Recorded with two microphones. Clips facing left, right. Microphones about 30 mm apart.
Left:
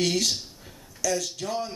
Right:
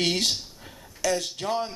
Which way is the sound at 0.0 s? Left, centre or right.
Right.